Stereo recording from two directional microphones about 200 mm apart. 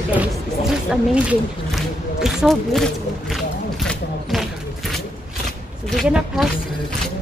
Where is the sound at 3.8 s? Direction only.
Centre (ahead or behind).